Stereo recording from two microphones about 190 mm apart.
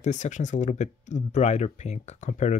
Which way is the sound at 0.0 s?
40° left (ahead or behind).